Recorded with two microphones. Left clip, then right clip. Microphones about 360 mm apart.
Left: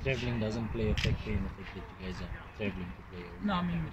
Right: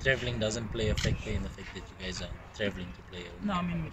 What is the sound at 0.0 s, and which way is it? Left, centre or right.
Speech, right.